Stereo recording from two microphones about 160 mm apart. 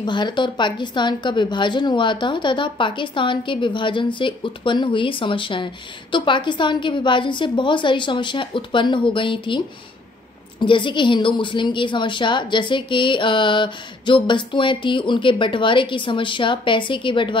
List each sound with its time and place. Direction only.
0.0 s a woman's voice: 30° left (ahead or behind)
10.6 s a woman's voice: 30° left (ahead or behind)